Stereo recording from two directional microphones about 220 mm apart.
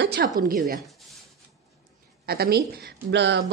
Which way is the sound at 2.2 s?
45° right (ahead or behind).